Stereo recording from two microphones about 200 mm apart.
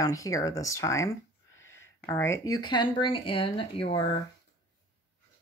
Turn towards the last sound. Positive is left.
turn(degrees=25)  # may be behind; listen again after turning